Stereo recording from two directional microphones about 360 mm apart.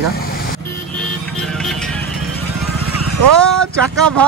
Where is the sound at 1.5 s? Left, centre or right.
Centre.